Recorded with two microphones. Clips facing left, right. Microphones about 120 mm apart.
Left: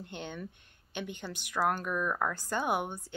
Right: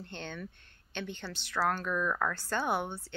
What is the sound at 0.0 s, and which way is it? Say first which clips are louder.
Speech: left 1 dB; 10° left (ahead or behind).